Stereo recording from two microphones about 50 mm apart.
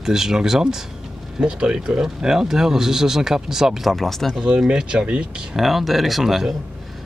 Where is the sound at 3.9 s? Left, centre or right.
Centre.